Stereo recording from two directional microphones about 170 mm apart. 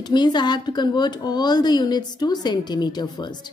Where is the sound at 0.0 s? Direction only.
25° left (ahead or behind).